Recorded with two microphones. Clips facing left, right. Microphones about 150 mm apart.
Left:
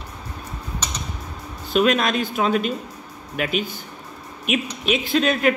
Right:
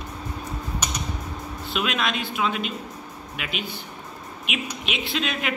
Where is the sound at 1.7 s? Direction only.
40° left (ahead or behind).